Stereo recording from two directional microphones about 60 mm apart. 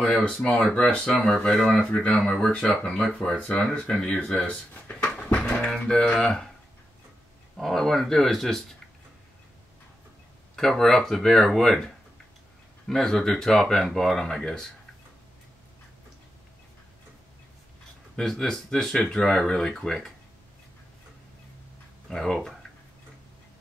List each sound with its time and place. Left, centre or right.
0.3 s speech: centre
1.8 s speech: centre
4.3 s a sound: left
5.7 s speech: centre
7.5 s speech: centre
10.5 s speech: centre
18.1 s speech: centre
22.1 s speech: centre